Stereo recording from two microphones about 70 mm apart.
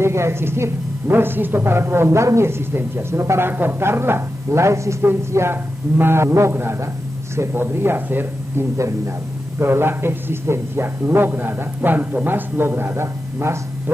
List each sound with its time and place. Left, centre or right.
0.0 s speech: right
8.7 s speech: right
9.6 s speech: right